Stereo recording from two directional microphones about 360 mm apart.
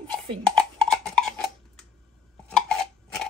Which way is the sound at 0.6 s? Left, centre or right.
Centre.